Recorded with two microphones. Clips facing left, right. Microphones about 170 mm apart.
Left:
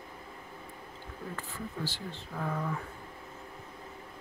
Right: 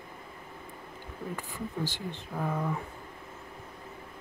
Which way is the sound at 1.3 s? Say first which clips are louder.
Right 4 dB; 15° right (ahead or behind).